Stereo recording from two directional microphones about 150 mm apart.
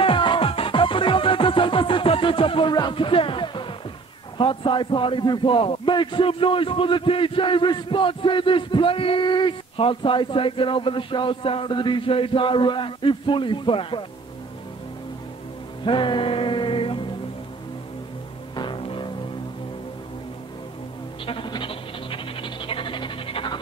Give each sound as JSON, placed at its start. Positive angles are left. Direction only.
{"t": 0.0, "sound": "music", "side_deg": 35}
{"t": 4.4, "sound": "speech", "side_deg": 35}
{"t": 15.8, "sound": "music", "side_deg": 35}
{"t": 18.5, "sound": "music", "side_deg": 30}
{"t": 21.3, "sound": "a sound", "side_deg": 35}